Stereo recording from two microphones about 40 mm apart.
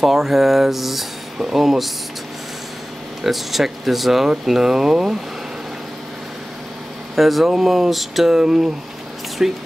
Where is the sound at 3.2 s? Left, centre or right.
Centre.